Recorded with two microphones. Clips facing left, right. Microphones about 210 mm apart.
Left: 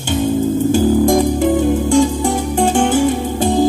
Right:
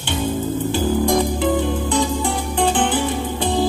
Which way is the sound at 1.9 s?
45° left (ahead or behind).